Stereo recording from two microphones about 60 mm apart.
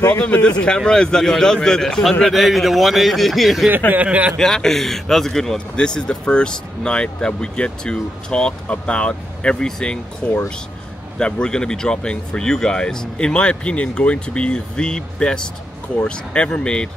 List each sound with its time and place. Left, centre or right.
0.2 s a man's voice: centre
2.3 s a man's voice: centre
3.9 s speech: right
4.4 s a man's voice: centre
10.2 s a man's voice: left